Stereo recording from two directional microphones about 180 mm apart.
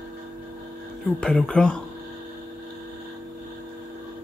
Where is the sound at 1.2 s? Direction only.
5° left (ahead or behind).